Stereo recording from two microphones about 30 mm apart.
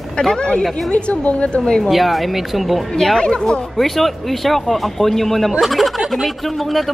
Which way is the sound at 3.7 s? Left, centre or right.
Centre.